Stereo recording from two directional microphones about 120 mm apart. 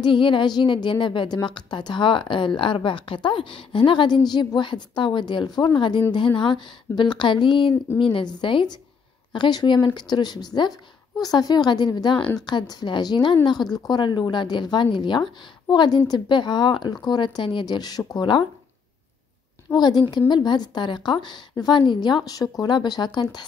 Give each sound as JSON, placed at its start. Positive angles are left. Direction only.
{"t": 0.0, "sound": "a woman's voice", "side_deg": 45}
{"t": 19.7, "sound": "a woman's voice", "side_deg": 35}